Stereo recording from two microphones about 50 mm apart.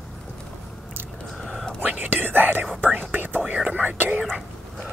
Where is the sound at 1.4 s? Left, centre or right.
Centre.